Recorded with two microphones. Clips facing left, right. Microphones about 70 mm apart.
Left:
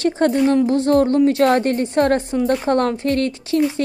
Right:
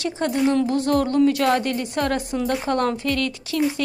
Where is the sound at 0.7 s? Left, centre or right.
Left.